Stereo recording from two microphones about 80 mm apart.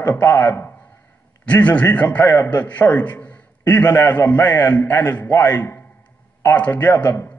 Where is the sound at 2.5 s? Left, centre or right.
Left.